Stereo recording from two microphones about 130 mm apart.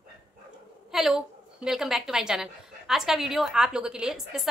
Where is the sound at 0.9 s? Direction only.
5° right (ahead or behind).